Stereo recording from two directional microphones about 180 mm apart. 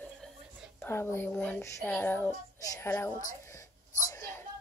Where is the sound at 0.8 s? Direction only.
15° left (ahead or behind).